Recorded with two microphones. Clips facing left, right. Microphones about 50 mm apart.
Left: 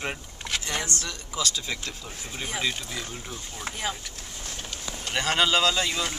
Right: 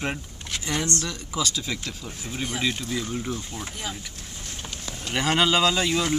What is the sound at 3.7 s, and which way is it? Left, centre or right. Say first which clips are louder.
Speech: left 7 dB; left.